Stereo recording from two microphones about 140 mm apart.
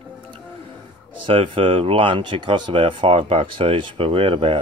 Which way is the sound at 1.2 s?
40° right (ahead or behind).